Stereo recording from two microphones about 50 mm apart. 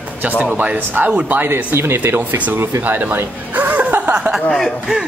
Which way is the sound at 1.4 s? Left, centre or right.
Right.